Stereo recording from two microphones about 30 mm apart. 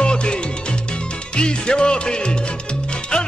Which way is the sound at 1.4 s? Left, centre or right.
Left.